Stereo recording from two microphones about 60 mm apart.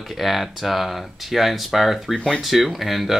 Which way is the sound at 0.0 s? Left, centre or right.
Centre.